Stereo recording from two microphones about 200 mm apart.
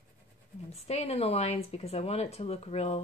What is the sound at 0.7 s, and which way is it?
A woman's voice, 30° left (ahead or behind).